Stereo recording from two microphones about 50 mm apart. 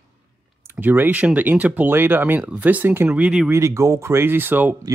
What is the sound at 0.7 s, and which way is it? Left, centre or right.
Speech, right.